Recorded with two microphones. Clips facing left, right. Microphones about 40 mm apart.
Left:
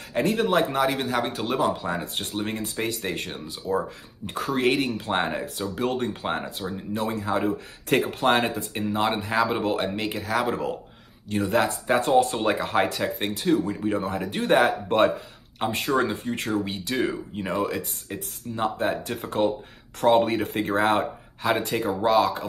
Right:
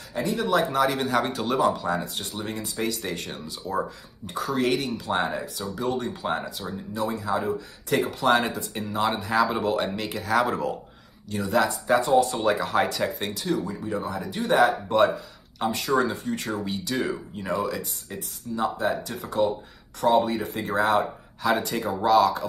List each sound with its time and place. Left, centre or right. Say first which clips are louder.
0.1 s speech: left 4 dB; left
0.5 s speech: left 1 dB; left
0.7 s a man's voice: right 1 dB; centre
1.8 s speech: right 2 dB; left
2.1 s speech: left 3 dB; left
4.3 s speech: left 1 dB; left
10.2 s a man's voice: right 3 dB; centre
11.2 s a man's voice: left 1 dB; left; by 13.3 s centre
13.3 s speech: left 4 dB; left
21.5 s speech: even; left